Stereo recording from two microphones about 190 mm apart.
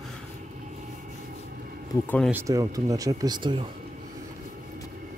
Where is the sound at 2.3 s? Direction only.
15° right (ahead or behind).